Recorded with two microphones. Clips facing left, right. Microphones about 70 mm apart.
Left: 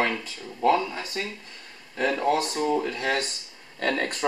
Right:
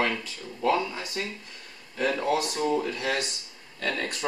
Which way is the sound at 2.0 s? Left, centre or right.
Left.